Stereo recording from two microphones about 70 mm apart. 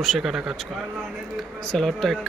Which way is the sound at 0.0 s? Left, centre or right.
Centre.